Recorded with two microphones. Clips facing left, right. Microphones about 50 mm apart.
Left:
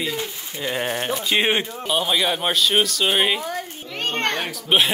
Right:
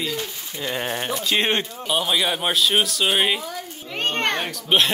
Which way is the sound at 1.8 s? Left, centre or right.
Centre.